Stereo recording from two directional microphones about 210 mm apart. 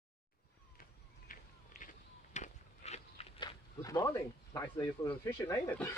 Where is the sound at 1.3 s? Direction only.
40° left (ahead or behind).